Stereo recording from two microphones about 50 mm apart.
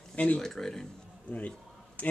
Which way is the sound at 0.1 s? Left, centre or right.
Left.